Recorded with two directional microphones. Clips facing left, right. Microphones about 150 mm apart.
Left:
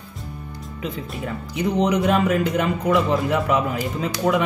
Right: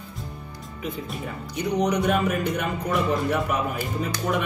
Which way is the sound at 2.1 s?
90° left.